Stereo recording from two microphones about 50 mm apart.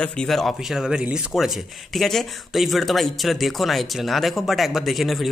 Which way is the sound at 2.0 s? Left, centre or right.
Centre.